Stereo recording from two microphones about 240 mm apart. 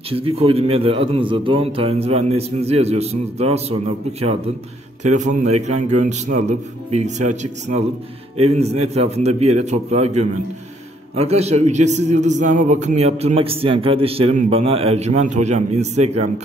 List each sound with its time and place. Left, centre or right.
0.1 s a man's voice: right
5.0 s a man's voice: right